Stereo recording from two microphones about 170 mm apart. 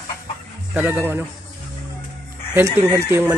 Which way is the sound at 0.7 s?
10° right (ahead or behind).